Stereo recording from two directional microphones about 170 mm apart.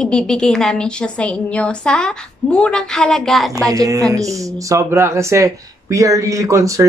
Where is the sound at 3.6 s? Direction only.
20° right (ahead or behind).